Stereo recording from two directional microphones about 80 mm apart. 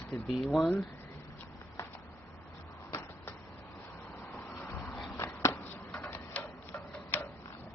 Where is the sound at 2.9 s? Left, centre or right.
Left.